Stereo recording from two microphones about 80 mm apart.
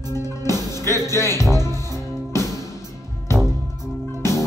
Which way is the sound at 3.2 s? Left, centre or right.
Left.